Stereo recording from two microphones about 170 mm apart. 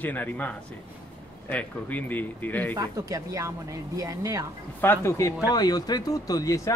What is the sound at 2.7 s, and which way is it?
Speech, 20° right (ahead or behind).